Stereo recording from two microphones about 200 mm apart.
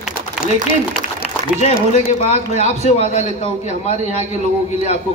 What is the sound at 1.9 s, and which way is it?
A man's voice, 30° left (ahead or behind).